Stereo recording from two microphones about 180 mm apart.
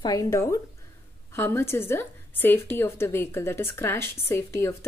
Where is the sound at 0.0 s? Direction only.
20° left (ahead or behind).